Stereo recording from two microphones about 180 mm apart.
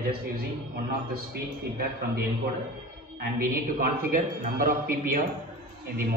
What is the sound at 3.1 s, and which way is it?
A man's voice, 55° right (ahead or behind).